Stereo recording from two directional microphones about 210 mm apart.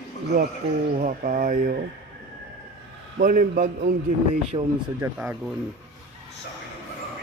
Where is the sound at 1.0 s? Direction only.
40° right (ahead or behind).